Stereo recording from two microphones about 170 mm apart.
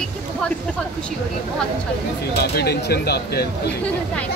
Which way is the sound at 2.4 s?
70° left (ahead or behind).